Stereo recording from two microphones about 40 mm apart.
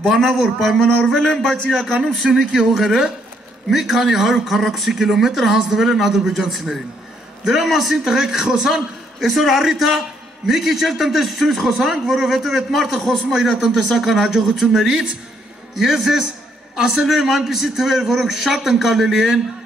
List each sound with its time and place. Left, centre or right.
0.1 s a man's voice: centre
0.7 s a sound: centre
2.0 s a man's voice: centre
3.7 s a man's voice: centre
9.2 s a man's voice: centre